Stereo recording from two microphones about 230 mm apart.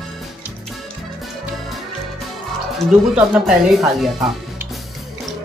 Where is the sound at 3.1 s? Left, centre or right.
Centre.